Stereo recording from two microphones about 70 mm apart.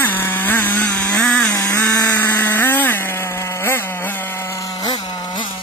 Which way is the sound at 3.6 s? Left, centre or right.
Left.